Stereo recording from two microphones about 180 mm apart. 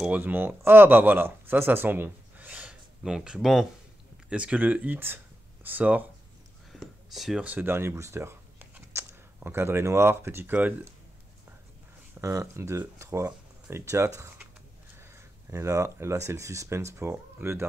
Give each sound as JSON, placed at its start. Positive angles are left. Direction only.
{"t": 0.0, "sound": "speech", "side_deg": -10}
{"t": 12.2, "sound": "speech", "side_deg": -15}